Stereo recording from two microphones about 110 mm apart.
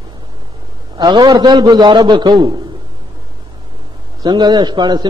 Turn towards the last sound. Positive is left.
turn(degrees=-40)  # may be behind; listen again after turning